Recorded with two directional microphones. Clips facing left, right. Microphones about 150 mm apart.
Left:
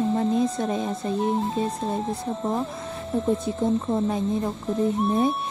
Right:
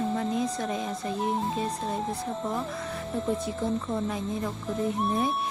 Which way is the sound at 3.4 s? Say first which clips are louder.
Left 5 dB; 25° left (ahead or behind).